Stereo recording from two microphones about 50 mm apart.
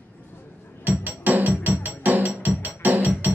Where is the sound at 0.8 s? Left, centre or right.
Right.